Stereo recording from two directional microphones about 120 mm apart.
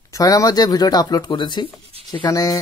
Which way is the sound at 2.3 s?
30° left (ahead or behind).